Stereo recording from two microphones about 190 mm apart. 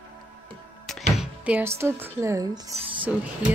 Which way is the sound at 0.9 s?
Centre (ahead or behind).